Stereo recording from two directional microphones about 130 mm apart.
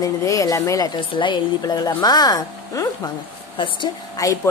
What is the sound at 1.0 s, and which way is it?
A woman's voice, 40° left (ahead or behind).